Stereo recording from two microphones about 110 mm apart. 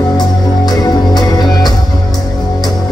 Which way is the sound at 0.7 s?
35° left (ahead or behind).